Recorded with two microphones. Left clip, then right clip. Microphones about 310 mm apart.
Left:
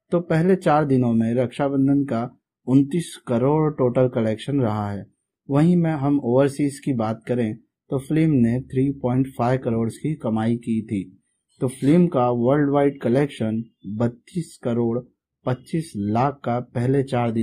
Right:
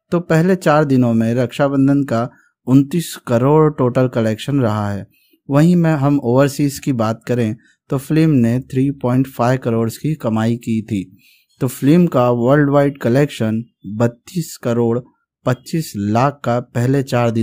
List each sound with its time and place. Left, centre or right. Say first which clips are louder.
0.1 s speech: right 4 dB; right